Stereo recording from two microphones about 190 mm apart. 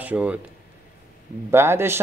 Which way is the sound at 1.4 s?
15° right (ahead or behind).